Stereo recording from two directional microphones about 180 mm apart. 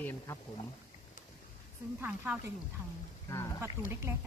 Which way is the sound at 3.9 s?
15° right (ahead or behind).